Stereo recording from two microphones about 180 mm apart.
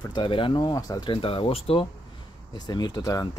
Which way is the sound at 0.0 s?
25° left (ahead or behind).